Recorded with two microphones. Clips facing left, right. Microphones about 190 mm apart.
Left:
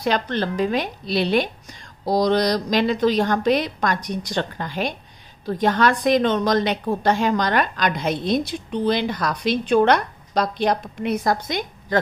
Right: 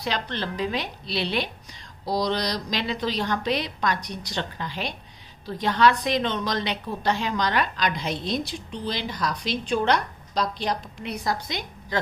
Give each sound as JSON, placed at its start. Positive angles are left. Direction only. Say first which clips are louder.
{"t": 0.0, "sound": "a woman's voice", "louder": "left 7 dB", "side_deg": 50}